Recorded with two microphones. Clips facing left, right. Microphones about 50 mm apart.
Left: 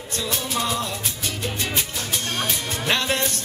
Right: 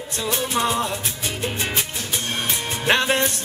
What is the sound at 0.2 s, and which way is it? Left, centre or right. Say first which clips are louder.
Music: right 4 dB; right.